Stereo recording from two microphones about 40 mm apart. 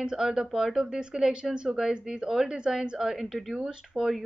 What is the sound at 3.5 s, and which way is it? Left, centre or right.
Speech, centre.